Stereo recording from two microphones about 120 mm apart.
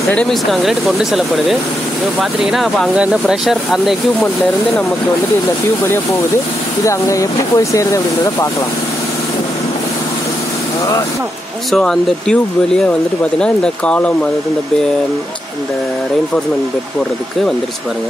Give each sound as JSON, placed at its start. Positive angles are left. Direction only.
{"t": 0.1, "sound": "speech", "side_deg": 5}
{"t": 6.8, "sound": "speech", "side_deg": 25}
{"t": 11.7, "sound": "speech", "side_deg": 5}